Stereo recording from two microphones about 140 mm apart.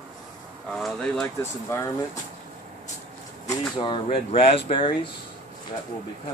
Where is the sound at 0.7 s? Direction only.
Centre (ahead or behind).